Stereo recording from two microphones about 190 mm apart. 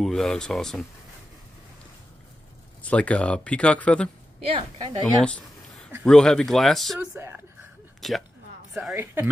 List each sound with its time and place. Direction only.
0.0 s speech: centre (ahead or behind)
2.8 s speech: 5° left (ahead or behind)
4.5 s a woman's voice: 30° right (ahead or behind)
6.0 s speech: 5° left (ahead or behind)
7.2 s speech: 10° right (ahead or behind)
8.0 s speech: centre (ahead or behind)
8.9 s speech: 15° right (ahead or behind)